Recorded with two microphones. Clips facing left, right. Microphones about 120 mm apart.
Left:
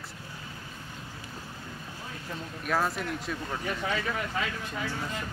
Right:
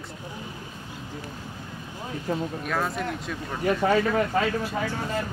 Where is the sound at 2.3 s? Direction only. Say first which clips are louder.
Right 12 dB; 50° right (ahead or behind).